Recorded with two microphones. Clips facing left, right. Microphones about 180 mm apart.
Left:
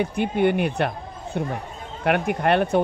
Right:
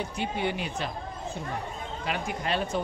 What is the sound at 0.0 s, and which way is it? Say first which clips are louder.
Speech: left 9 dB; 55° left (ahead or behind).